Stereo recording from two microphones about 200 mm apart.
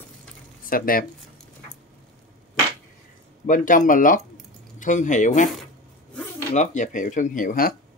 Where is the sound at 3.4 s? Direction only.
40° left (ahead or behind).